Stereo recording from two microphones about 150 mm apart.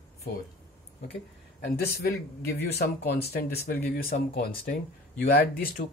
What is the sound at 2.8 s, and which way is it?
Speech, 90° left.